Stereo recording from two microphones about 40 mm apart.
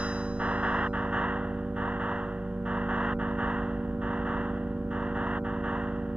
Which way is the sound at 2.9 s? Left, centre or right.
Right.